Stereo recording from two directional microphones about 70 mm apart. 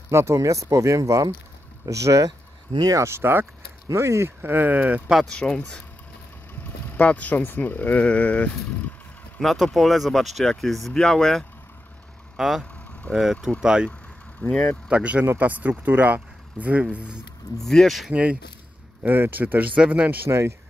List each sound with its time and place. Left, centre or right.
0.1 s speech: right
3.0 s speech: right
5.3 s speech: centre
6.9 s speech: left
9.4 s speech: centre
12.4 s speech: centre
14.4 s speech: left
14.9 s speech: centre
17.6 s speech: centre
18.1 s speech: centre
19.0 s speech: right
20.2 s speech: right